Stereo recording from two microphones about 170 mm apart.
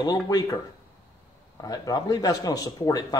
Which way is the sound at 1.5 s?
20° left (ahead or behind).